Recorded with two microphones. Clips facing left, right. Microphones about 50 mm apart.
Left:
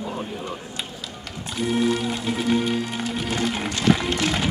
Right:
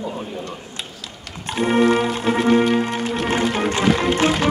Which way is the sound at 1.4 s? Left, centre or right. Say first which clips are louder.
Right 6 dB; right.